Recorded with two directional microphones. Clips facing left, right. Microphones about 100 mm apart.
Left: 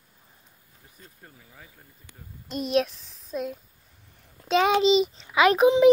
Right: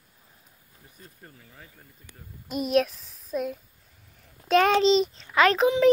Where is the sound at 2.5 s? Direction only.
5° right (ahead or behind).